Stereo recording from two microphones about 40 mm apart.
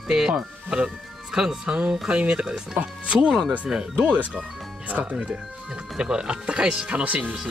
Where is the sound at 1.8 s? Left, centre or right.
Right.